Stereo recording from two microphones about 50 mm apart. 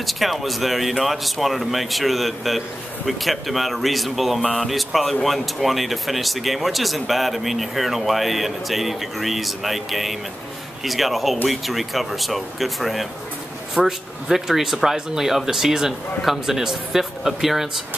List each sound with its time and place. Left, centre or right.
0.0 s speech: centre